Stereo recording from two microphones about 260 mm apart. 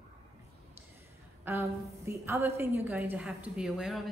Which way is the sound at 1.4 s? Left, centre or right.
Centre.